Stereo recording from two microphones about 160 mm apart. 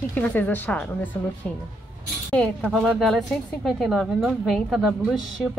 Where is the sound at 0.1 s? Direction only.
10° left (ahead or behind).